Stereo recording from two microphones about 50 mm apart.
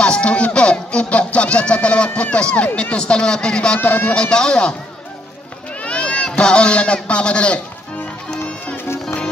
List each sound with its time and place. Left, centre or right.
0.0 s music: left
2.2 s speech: left
3.8 s speech: left
4.1 s a man's voice: centre
5.8 s speech: left
8.7 s music: left